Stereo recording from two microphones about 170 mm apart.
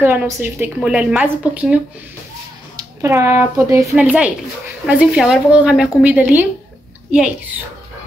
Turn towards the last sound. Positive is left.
turn(degrees=-5)  # may be behind; listen again after turning